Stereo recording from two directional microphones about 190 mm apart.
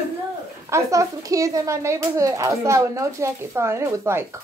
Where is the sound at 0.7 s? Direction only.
15° right (ahead or behind).